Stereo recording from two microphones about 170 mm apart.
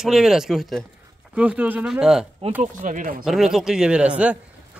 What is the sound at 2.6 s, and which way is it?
Speech, 50° right (ahead or behind).